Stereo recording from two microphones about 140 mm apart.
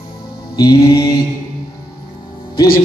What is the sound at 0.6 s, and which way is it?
Speech, 25° left (ahead or behind).